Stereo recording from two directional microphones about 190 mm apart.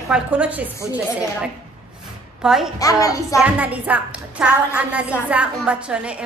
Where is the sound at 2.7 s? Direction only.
15° left (ahead or behind).